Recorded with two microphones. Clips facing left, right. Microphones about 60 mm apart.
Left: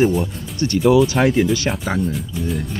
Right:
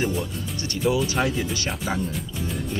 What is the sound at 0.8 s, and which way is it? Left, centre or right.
Speech, left.